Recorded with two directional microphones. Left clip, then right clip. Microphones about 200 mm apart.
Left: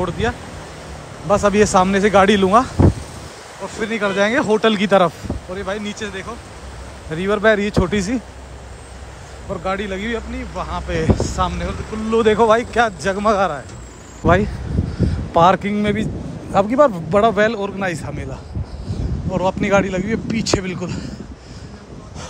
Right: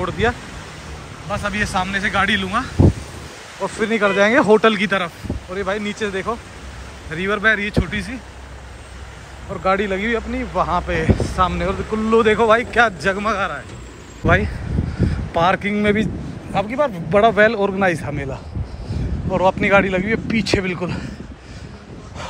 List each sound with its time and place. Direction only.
0.0 s speech: 15° left (ahead or behind)
1.3 s a man's voice: 35° left (ahead or behind)
3.6 s speech: 15° left (ahead or behind)
9.6 s speech: 10° left (ahead or behind)